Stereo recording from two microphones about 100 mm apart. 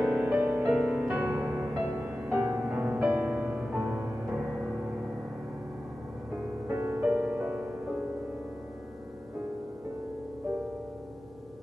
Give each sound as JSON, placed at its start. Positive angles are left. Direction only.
{"t": 0.0, "sound": "music", "side_deg": -10}
{"t": 2.3, "sound": "music", "side_deg": -25}
{"t": 2.6, "sound": "music", "side_deg": -15}
{"t": 6.7, "sound": "music", "side_deg": -20}